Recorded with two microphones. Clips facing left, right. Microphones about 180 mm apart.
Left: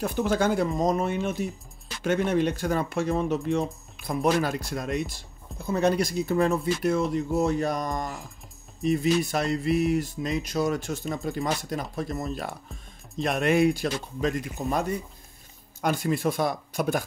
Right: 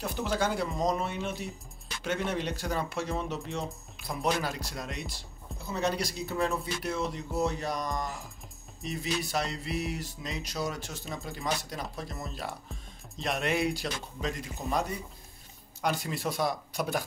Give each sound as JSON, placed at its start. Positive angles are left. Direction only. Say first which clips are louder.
{"t": 0.0, "sound": "speech", "louder": "left 6 dB", "side_deg": 50}